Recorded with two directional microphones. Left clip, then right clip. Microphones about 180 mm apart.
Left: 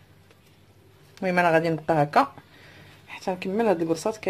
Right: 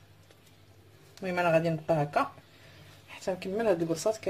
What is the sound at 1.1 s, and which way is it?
Speech, 50° left (ahead or behind).